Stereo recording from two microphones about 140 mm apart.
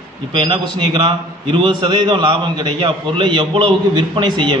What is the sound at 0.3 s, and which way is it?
A man's voice, 35° right (ahead or behind).